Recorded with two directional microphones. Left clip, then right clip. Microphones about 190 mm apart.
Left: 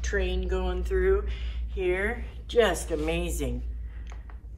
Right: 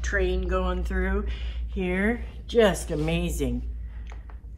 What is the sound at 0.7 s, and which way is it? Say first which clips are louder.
Speech: left 4 dB; 35° right (ahead or behind).